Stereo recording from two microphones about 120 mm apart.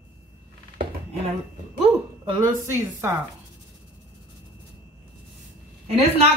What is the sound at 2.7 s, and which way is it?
Speech, 20° right (ahead or behind).